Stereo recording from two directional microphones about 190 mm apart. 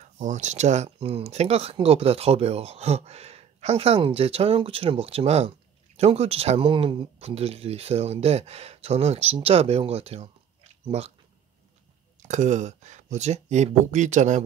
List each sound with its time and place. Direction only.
0.0 s speech: 40° right (ahead or behind)
12.2 s speech: 40° right (ahead or behind)